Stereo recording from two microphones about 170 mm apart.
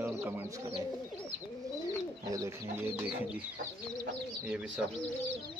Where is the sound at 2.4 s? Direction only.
10° right (ahead or behind).